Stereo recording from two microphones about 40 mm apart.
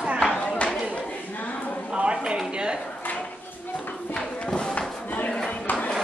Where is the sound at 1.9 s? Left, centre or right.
Right.